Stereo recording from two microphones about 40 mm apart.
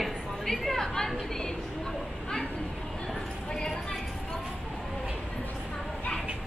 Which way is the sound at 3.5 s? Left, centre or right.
Centre.